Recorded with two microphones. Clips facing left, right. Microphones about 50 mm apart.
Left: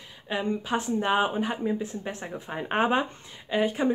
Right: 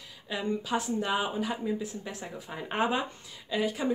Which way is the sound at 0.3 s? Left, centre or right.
Left.